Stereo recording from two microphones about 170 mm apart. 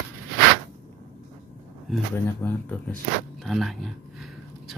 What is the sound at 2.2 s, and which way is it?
Speech, 10° left (ahead or behind).